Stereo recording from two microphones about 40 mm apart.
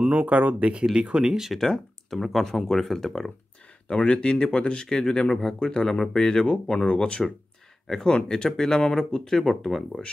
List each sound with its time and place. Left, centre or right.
0.1 s speech: right
0.9 s speech: right
2.0 s speech: centre
3.8 s speech: left; by 6.4 s centre
6.4 s speech: left
7.9 s speech: centre